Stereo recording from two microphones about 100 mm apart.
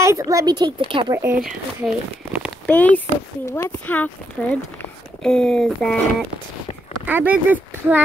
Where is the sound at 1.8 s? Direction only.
15° right (ahead or behind).